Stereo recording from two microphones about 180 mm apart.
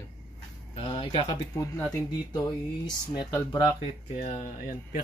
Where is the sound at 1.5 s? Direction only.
20° left (ahead or behind).